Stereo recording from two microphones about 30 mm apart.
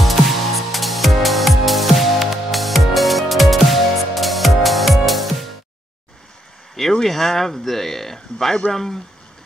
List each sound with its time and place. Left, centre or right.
0.0 s music: centre
6.8 s speech: centre